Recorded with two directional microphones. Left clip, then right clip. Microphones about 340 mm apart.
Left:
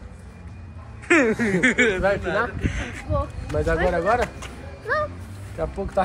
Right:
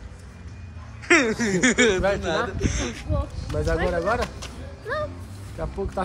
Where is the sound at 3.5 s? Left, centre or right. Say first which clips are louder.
Left 3 dB; left.